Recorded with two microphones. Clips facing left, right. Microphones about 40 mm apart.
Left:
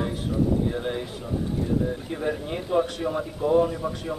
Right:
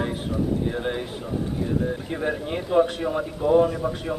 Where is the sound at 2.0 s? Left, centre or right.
Right.